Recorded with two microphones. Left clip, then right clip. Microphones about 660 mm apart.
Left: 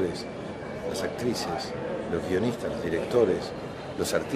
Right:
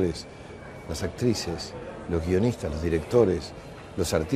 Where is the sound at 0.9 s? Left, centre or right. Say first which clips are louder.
Right 2 dB; right.